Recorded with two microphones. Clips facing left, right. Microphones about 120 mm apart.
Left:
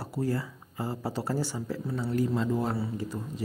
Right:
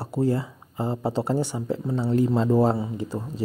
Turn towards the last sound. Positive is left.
turn(degrees=-20)  # may be behind; listen again after turning